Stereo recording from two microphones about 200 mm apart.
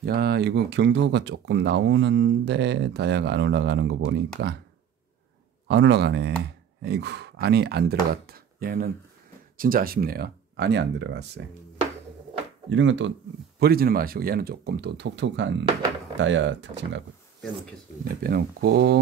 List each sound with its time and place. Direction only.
0.0 s speech: 55° right (ahead or behind)
5.7 s speech: 60° right (ahead or behind)
12.6 s speech: 65° right (ahead or behind)
13.6 s speech: 50° right (ahead or behind); by 17.0 s 65° right (ahead or behind)
18.0 s speech: 50° right (ahead or behind)